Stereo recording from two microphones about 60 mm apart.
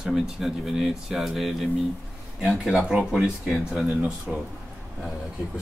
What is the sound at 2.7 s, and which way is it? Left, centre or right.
Speech, centre.